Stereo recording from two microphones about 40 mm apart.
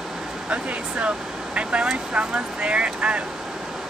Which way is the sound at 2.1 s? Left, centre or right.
Right.